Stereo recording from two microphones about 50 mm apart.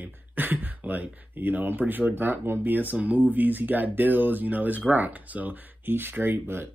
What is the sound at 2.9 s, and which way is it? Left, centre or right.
Speech, right.